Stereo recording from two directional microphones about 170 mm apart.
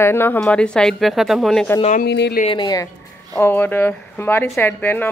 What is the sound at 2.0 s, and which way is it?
Speech, 85° left.